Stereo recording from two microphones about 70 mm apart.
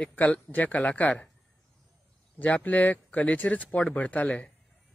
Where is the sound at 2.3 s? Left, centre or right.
Left.